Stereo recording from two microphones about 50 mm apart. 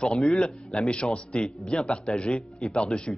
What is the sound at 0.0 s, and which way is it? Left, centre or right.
A man's voice, centre.